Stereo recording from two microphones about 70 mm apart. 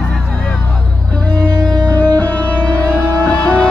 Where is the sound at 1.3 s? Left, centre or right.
Right.